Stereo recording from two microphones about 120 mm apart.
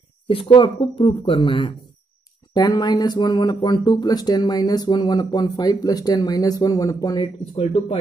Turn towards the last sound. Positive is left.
turn(degrees=45)  # may be behind; listen again after turning